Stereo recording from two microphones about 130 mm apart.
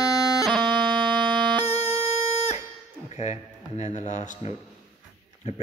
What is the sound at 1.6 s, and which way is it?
Music, 55° left (ahead or behind).